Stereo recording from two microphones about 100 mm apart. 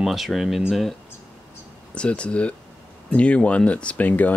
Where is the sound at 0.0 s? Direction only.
Centre (ahead or behind).